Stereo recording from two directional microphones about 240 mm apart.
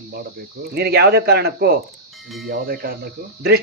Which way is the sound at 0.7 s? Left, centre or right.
Right.